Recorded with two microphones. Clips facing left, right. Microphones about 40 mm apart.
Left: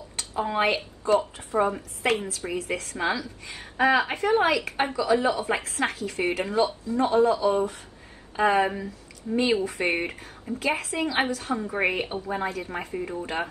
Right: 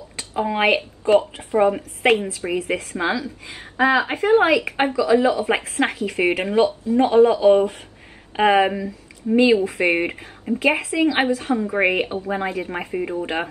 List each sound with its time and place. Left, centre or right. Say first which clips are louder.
0.2 s speech: right 4 dB; right
4.9 s speech: right 6 dB; right
5.8 s speech: right 6 dB; right